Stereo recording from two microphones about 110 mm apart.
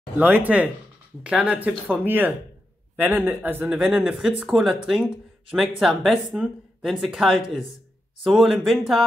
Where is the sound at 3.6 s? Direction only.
10° right (ahead or behind).